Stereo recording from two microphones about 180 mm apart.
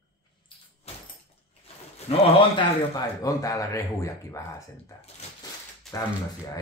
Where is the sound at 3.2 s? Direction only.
20° left (ahead or behind).